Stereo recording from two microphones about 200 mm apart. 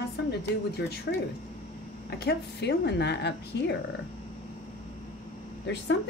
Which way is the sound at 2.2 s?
55° left (ahead or behind).